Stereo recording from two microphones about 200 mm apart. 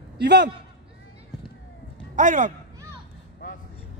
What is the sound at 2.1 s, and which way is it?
Speech, 40° right (ahead or behind).